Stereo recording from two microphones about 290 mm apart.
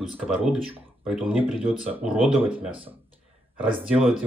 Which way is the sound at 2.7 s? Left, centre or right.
Centre.